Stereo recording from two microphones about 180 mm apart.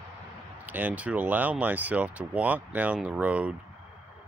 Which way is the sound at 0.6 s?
10° right (ahead or behind).